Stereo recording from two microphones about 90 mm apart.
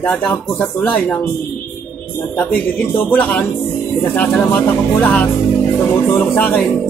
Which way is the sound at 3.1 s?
20° left (ahead or behind).